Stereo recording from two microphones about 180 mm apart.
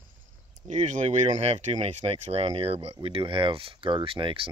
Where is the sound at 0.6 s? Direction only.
40° right (ahead or behind).